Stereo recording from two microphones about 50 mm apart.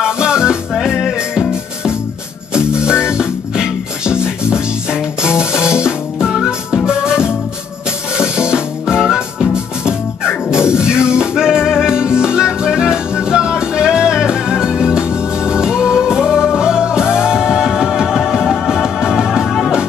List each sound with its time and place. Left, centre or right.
0.0 s music: centre
0.7 s music: centre